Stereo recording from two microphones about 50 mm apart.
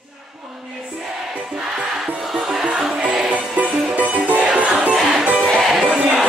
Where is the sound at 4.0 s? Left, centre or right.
Right.